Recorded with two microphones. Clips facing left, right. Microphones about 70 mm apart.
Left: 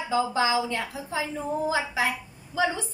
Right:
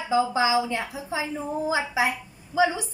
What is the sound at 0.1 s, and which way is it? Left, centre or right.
A woman's voice, centre.